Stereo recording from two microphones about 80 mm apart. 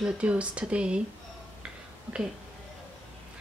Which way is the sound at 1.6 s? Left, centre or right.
Centre.